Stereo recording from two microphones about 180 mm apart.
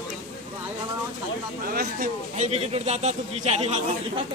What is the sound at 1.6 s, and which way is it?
Speech, 55° right (ahead or behind).